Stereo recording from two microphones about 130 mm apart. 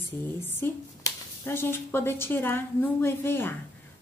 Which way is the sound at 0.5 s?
15° left (ahead or behind).